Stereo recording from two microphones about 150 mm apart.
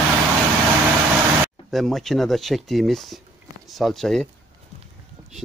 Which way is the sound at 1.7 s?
Centre (ahead or behind).